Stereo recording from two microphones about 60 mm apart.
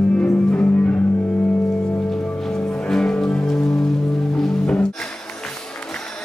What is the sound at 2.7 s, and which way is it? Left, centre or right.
Music, centre.